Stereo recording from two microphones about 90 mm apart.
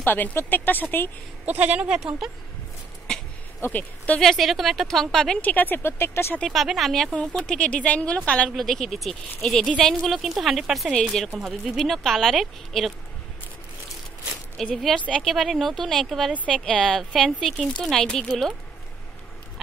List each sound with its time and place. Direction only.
0.0 s speech: 20° left (ahead or behind)
1.4 s speech: 15° right (ahead or behind)
3.6 s a woman's voice: 15° left (ahead or behind)
4.2 s a woman's voice: centre (ahead or behind); by 6.3 s 30° left (ahead or behind)
6.5 s a woman's voice: centre (ahead or behind)
14.6 s speech: centre (ahead or behind)
15.0 s a woman's voice: 15° left (ahead or behind)
15.2 s a woman's voice: centre (ahead or behind)